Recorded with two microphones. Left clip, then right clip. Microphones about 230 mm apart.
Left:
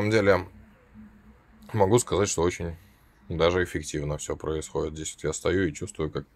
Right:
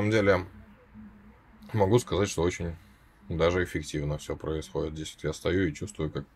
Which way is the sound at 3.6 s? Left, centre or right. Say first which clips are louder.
Left 2 dB; centre.